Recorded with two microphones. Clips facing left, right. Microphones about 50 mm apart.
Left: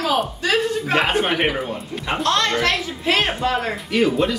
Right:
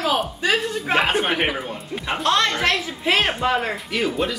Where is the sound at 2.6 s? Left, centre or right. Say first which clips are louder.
Left 1 dB; centre.